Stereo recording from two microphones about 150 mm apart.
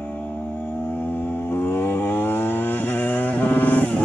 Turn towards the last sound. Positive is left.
turn(degrees=10)  # may be behind; listen again after turning